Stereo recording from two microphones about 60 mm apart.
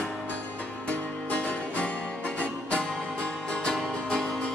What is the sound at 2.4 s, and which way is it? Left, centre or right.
Music, centre.